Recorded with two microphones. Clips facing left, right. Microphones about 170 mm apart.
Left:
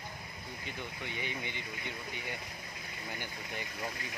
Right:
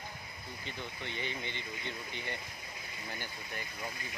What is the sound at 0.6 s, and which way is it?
Speech, 10° left (ahead or behind).